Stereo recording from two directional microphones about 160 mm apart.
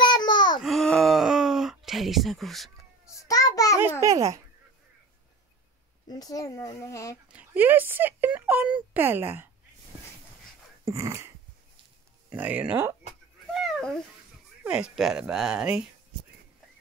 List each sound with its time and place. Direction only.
0.0 s babbling: 25° left (ahead or behind)
0.6 s groan: centre (ahead or behind)
3.1 s child singing: 20° left (ahead or behind)
4.0 s a sound: 20° right (ahead or behind)
6.0 s speech: 25° left (ahead or behind)
7.3 s speech: 10° right (ahead or behind)
10.9 s a sound: 20° right (ahead or behind)
12.3 s speech: 10° right (ahead or behind)
13.5 s a sound: centre (ahead or behind)
14.6 s speech: 5° right (ahead or behind)